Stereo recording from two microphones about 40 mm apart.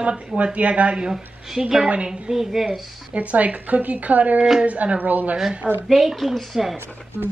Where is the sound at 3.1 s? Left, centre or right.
Right.